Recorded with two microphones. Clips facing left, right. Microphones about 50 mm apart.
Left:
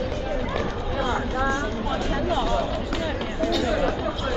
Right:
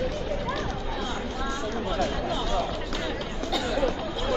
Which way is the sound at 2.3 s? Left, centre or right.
Centre.